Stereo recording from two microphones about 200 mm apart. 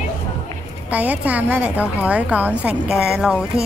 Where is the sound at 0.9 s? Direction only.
5° right (ahead or behind).